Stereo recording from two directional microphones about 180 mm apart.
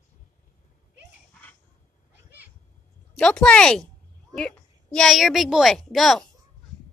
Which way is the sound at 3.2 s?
5° left (ahead or behind).